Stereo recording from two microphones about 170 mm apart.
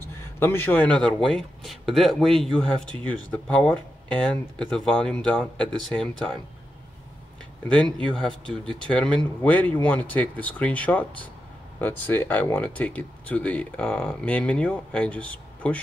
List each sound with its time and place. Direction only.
0.4 s speech: 15° left (ahead or behind)
7.6 s speech: 5° left (ahead or behind)
8.3 s speech: 30° right (ahead or behind)
8.7 s speech: 5° left (ahead or behind)